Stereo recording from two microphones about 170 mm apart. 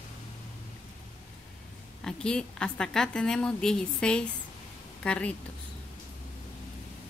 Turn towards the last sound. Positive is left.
turn(degrees=10)  # may be behind; listen again after turning